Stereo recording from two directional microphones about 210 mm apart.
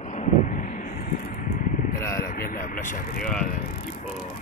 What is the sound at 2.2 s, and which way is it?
Speech, 45° left (ahead or behind).